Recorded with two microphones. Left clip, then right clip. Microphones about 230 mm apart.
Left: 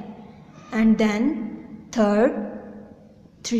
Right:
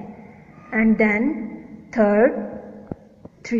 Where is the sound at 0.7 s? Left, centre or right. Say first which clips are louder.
Right 3 dB; centre.